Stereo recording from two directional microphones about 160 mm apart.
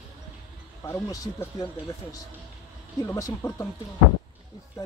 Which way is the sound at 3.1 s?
20° left (ahead or behind).